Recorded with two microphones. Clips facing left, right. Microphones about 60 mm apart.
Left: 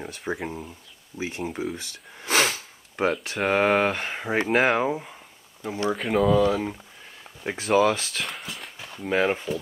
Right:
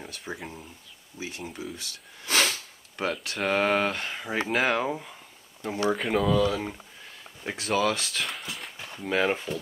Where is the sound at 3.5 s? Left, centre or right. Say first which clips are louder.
Left 4 dB; left.